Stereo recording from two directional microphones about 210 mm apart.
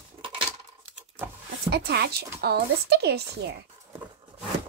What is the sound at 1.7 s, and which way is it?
Speech, 50° right (ahead or behind).